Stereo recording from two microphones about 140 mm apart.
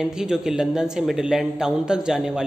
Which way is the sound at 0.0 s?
5° right (ahead or behind).